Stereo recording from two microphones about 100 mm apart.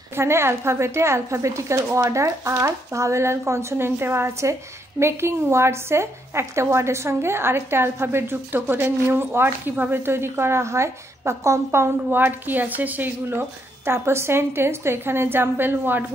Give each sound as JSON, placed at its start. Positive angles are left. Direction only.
{"t": 0.1, "sound": "a woman's voice", "side_deg": -25}